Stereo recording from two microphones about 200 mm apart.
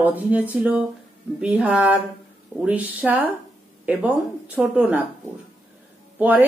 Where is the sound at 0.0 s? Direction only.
10° right (ahead or behind).